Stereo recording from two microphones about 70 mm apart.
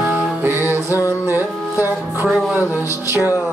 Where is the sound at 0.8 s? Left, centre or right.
Left.